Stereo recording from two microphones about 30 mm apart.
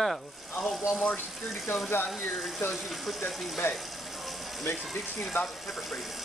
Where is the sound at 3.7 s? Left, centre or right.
Centre.